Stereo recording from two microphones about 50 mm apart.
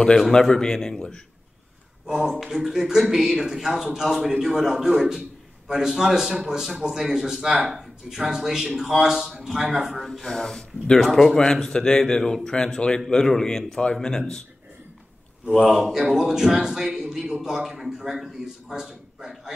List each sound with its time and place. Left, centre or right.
0.3 s speech: centre
2.0 s a man's voice: centre
10.2 s speech: centre
11.1 s a man's voice: centre
11.3 s speech: centre
15.5 s a man's voice: centre